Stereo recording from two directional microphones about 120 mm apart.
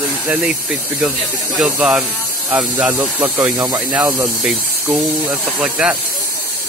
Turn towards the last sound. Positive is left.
turn(degrees=-5)  # may be behind; listen again after turning